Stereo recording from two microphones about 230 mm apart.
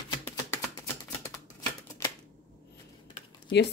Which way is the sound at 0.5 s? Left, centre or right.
Centre.